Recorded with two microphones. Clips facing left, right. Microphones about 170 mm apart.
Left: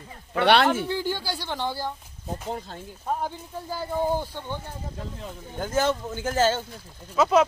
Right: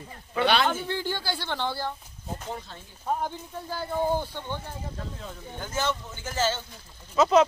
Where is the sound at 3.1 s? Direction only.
5° left (ahead or behind).